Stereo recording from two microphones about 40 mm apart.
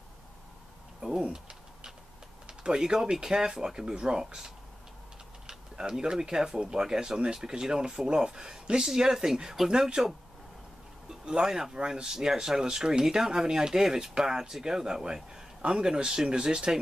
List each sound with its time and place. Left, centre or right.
1.3 s a sound: right
2.4 s speech: right
5.5 s speech: centre
11.1 s speech: centre